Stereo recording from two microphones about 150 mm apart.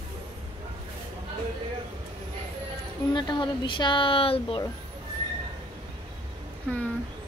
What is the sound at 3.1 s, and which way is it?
Speech, 30° left (ahead or behind).